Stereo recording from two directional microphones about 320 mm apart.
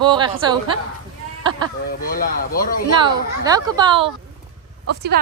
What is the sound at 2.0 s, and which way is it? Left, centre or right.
Speech, left.